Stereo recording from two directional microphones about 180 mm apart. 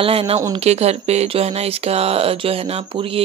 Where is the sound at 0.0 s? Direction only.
30° right (ahead or behind).